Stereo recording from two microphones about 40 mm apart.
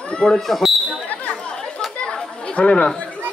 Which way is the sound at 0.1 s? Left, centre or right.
Left.